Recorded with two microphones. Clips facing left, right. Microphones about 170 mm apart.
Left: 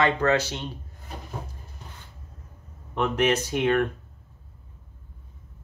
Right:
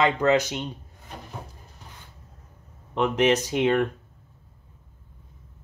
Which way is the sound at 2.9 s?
15° right (ahead or behind).